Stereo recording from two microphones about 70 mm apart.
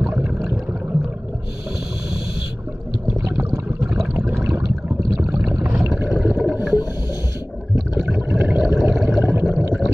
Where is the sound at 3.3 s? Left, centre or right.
Right.